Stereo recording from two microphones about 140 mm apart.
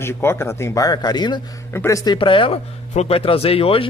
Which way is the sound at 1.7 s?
20° left (ahead or behind).